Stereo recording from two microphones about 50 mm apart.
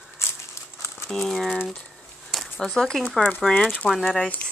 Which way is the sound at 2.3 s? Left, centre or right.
Centre.